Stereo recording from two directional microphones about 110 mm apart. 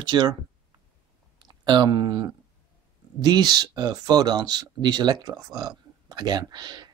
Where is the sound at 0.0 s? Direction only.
40° right (ahead or behind).